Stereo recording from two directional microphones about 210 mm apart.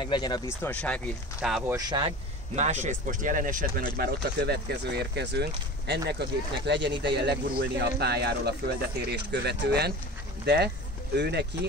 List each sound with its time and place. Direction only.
0.0 s speech: 20° left (ahead or behind); by 1.8 s 5° right (ahead or behind)
1.8 s speech: 20° right (ahead or behind); by 11.4 s 50° right (ahead or behind)